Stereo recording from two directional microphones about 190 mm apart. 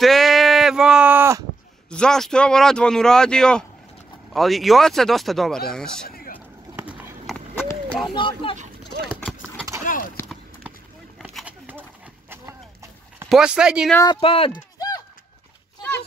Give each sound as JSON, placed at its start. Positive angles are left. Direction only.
{"t": 0.0, "sound": "a sound", "side_deg": 0}
{"t": 1.9, "sound": "speech", "side_deg": 5}
{"t": 6.0, "sound": "vehicle", "side_deg": 50}
{"t": 6.8, "sound": "run", "side_deg": -10}
{"t": 7.3, "sound": "clip-clop", "side_deg": 10}
{"t": 8.1, "sound": "speech", "side_deg": 25}
{"t": 9.9, "sound": "a sound", "side_deg": 45}
{"t": 11.2, "sound": "a sound", "side_deg": -5}
{"t": 13.3, "sound": "speech", "side_deg": -5}
{"t": 14.2, "sound": "clip-clop", "side_deg": 30}